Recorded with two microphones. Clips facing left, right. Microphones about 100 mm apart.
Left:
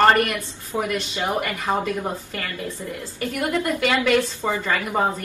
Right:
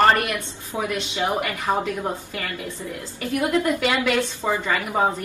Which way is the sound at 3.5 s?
5° right (ahead or behind).